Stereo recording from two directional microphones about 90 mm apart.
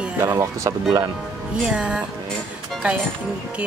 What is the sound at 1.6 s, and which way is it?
Speech, 10° right (ahead or behind).